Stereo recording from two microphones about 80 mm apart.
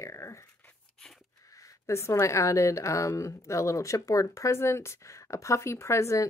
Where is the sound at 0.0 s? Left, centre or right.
Left.